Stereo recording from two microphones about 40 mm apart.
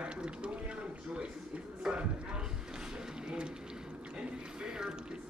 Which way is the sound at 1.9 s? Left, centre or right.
Right.